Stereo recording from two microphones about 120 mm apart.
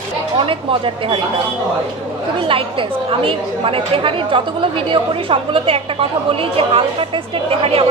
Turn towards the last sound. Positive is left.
turn(degrees=-50)  # may be behind; listen again after turning